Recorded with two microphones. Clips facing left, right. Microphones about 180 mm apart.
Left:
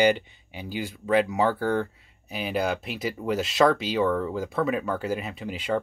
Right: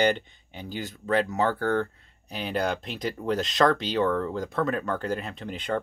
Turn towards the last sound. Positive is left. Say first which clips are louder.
# left 2 dB
turn(degrees=10)  # may be behind; listen again after turning